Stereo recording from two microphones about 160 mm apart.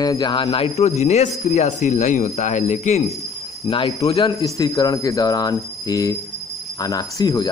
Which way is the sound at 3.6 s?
35° left (ahead or behind).